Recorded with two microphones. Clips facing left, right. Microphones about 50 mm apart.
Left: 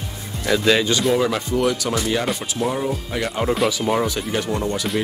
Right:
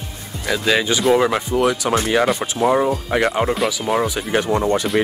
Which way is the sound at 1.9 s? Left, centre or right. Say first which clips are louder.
Right 5 dB; right.